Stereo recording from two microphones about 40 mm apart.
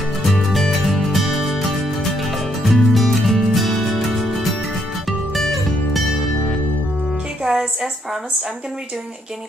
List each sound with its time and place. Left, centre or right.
0.2 s music: centre
7.4 s music: centre